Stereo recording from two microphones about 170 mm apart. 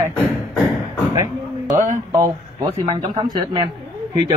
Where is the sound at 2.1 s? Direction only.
20° right (ahead or behind).